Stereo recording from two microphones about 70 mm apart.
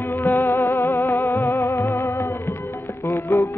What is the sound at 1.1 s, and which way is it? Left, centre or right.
Music, left.